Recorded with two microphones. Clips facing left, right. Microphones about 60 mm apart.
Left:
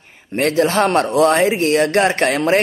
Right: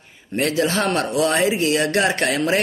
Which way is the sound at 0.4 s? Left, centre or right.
Left.